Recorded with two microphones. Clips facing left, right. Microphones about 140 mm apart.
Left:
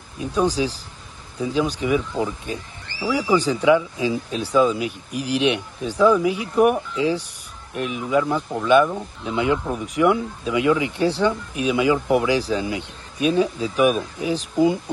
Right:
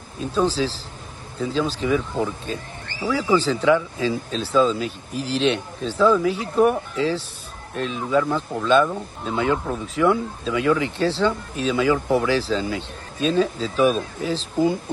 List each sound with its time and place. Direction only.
0.2 s speech: 15° left (ahead or behind)